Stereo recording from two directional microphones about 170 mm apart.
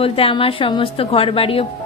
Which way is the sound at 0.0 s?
35° left (ahead or behind).